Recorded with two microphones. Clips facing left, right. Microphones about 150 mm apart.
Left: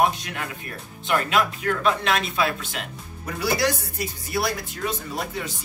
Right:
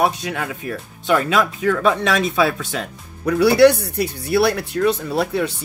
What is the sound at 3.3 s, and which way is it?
Speech, 70° right (ahead or behind).